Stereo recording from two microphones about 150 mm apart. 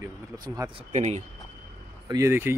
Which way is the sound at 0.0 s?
20° right (ahead or behind).